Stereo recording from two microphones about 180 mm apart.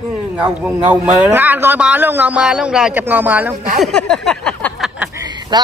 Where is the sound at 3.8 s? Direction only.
Centre (ahead or behind).